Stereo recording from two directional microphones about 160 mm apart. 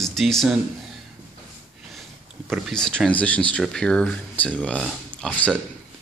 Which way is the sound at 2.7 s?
5° left (ahead or behind).